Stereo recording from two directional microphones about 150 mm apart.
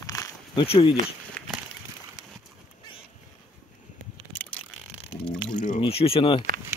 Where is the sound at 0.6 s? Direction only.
40° left (ahead or behind).